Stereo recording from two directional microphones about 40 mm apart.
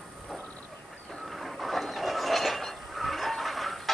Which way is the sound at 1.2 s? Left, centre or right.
Centre.